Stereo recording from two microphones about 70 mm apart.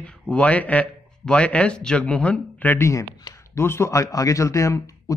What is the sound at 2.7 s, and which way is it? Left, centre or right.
A man's voice, left.